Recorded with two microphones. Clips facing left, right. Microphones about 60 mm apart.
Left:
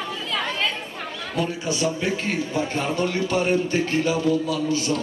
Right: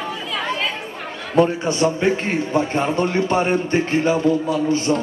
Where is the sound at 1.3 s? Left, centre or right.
Right.